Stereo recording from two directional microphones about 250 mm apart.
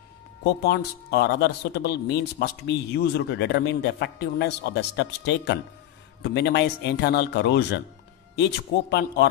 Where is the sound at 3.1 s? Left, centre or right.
Left.